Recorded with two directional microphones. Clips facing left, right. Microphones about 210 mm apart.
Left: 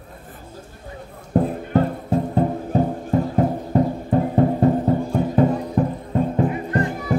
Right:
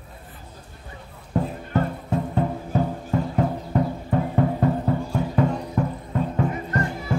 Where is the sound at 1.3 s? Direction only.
40° left (ahead or behind).